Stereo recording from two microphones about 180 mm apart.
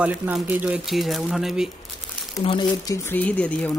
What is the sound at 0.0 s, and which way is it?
Speech, 10° right (ahead or behind).